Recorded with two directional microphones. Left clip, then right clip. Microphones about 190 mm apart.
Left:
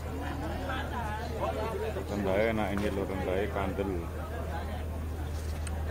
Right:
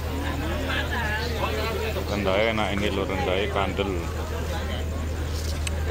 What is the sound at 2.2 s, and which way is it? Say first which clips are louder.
Speech: right 6 dB; 15° left (ahead or behind).